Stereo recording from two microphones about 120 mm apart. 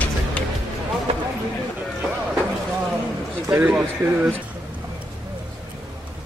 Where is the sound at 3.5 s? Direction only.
15° right (ahead or behind).